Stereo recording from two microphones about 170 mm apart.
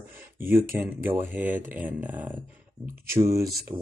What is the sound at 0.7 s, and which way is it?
Speech, 10° right (ahead or behind).